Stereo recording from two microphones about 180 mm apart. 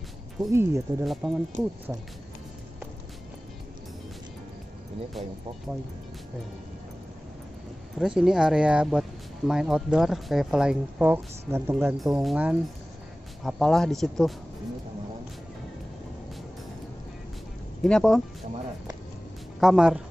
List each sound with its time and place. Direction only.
0.4 s speech: 15° right (ahead or behind)
1.0 s speech: centre (ahead or behind)
8.0 s speech: 5° right (ahead or behind)
12.0 s speech: centre (ahead or behind)
17.8 s speech: 5° left (ahead or behind)
19.6 s speech: centre (ahead or behind)